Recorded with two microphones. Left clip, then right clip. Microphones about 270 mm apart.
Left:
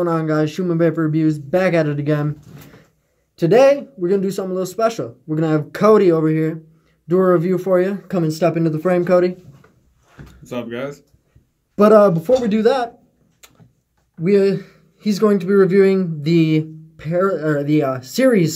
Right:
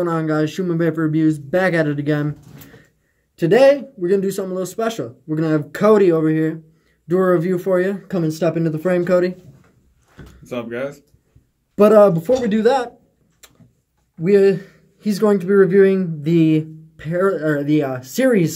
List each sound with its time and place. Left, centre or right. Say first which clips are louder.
0.0 s speech: left 1 dB; centre
10.4 s speech: right 1 dB; centre
11.7 s speech: even; centre
14.2 s speech: right 2 dB; centre